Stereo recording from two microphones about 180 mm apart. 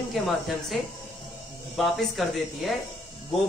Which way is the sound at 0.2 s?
Centre (ahead or behind).